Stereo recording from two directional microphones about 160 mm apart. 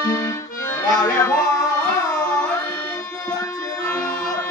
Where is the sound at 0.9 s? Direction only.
25° left (ahead or behind).